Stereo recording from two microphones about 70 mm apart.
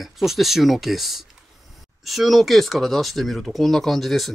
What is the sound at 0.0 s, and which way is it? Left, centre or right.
Speech, centre.